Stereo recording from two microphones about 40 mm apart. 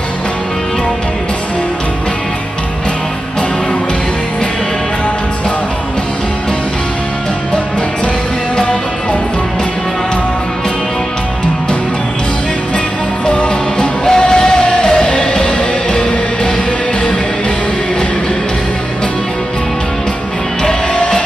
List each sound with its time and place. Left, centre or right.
13.3 s music: left
20.6 s music: centre